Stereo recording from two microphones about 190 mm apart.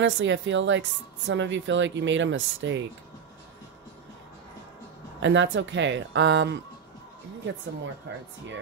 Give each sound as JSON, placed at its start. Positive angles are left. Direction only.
{"t": 0.0, "sound": "speech", "side_deg": -75}
{"t": 5.2, "sound": "speech", "side_deg": -75}